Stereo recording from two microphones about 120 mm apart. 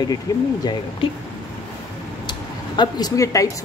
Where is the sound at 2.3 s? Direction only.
35° left (ahead or behind).